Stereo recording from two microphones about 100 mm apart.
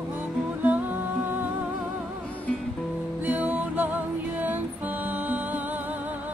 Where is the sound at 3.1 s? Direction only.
15° right (ahead or behind).